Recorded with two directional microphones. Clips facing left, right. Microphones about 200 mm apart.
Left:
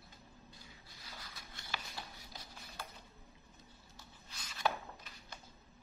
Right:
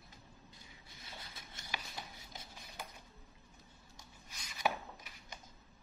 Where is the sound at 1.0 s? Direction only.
25° right (ahead or behind).